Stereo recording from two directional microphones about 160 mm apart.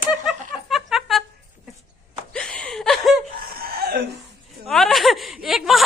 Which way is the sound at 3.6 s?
75° right (ahead or behind).